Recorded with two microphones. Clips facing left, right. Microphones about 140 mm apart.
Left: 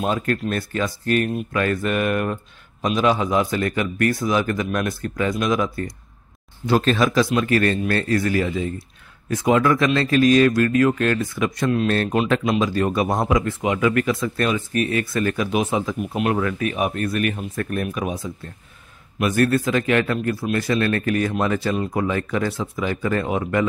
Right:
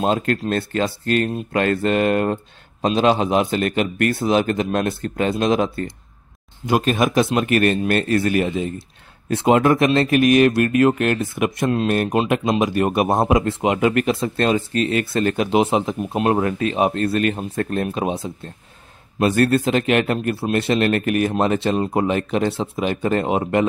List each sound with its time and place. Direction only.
0.4 s speech: 30° right (ahead or behind)
6.7 s speech: 15° right (ahead or behind)